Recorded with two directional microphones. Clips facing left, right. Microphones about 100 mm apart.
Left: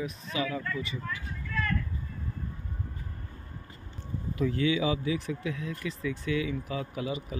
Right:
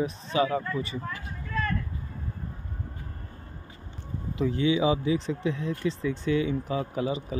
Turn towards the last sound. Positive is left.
turn(degrees=-30)  # may be behind; listen again after turning